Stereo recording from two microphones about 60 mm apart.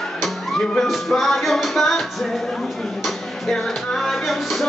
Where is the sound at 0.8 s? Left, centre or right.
Centre.